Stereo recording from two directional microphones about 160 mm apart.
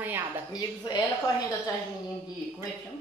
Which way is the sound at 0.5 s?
25° left (ahead or behind).